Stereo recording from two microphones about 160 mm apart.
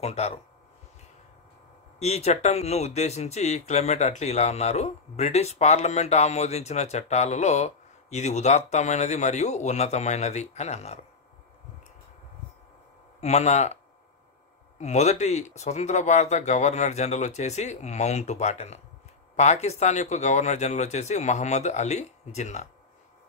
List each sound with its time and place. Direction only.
0.0 s speech: 40° left (ahead or behind)
2.0 s speech: 40° left (ahead or behind)
13.2 s speech: 45° left (ahead or behind)
14.8 s speech: 45° left (ahead or behind)